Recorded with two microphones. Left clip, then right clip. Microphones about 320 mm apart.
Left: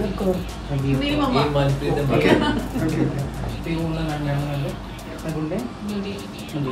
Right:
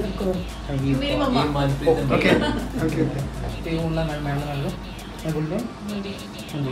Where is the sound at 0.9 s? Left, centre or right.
Centre.